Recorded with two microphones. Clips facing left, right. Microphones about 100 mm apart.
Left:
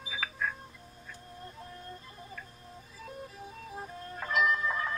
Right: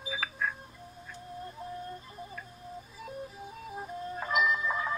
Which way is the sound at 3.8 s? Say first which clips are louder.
Right 4 dB; 15° right (ahead or behind).